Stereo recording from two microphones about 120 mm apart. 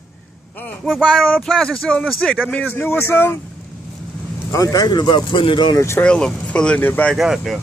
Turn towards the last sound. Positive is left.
turn(degrees=0)  # may be behind; listen again after turning